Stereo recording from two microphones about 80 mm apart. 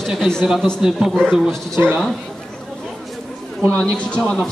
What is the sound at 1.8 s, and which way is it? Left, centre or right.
Speech, centre.